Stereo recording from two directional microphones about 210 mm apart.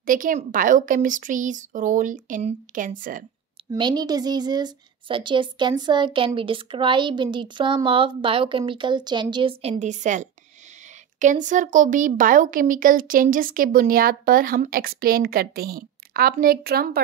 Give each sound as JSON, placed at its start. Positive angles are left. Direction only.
{"t": 0.0, "sound": "a woman's voice", "side_deg": -40}
{"t": 3.7, "sound": "a woman's voice", "side_deg": -20}